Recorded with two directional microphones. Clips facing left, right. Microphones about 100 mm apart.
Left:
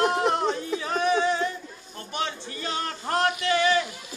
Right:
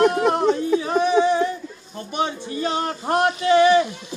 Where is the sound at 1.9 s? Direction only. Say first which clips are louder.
Right 6 dB; 20° right (ahead or behind).